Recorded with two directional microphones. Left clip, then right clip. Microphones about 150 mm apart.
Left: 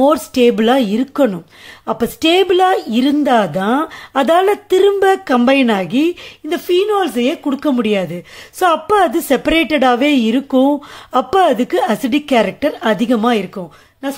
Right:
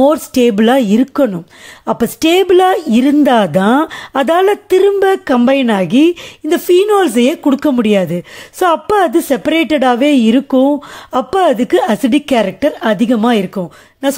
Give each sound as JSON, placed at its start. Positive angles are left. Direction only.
{"t": 0.0, "sound": "speech", "side_deg": -30}
{"t": 1.1, "sound": "speech", "side_deg": -20}
{"t": 6.7, "sound": "speech", "side_deg": -45}